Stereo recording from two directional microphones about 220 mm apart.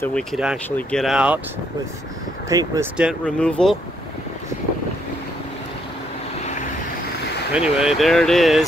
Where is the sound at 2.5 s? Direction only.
15° right (ahead or behind).